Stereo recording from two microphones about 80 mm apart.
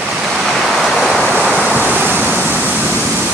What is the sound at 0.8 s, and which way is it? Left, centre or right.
Waves, centre.